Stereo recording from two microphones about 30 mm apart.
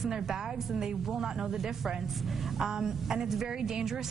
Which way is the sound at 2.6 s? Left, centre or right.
Centre.